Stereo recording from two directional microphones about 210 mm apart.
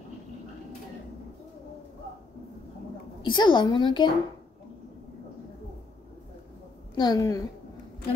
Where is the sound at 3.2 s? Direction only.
20° left (ahead or behind).